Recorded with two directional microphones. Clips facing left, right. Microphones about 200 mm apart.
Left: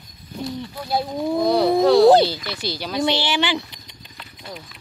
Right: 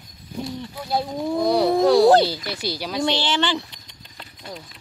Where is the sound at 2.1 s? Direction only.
25° left (ahead or behind).